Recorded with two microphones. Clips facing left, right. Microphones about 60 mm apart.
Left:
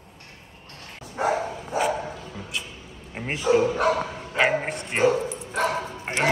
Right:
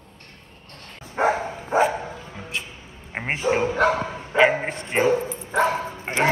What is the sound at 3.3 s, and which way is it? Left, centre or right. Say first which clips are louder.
Speech: left 1 dB; right.